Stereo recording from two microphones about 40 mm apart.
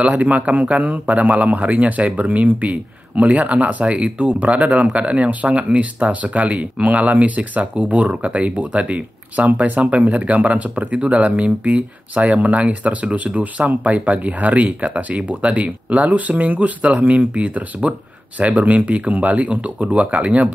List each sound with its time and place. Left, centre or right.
0.0 s speech: right